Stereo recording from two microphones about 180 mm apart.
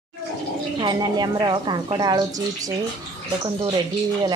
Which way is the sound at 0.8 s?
25° right (ahead or behind).